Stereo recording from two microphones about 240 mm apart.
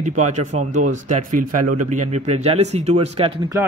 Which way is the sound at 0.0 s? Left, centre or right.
Right.